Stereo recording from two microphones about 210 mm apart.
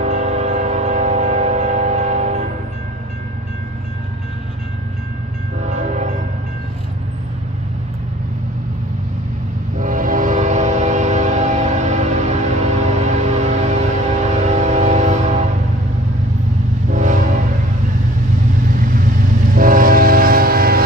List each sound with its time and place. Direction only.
0.0 s train: 35° right (ahead or behind)
5.6 s train: 35° right (ahead or behind)
9.8 s train: 40° right (ahead or behind)
16.9 s vehicle: 35° right (ahead or behind)
19.5 s train: 40° right (ahead or behind)